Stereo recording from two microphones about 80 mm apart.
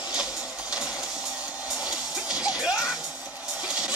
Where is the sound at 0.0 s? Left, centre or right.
Centre.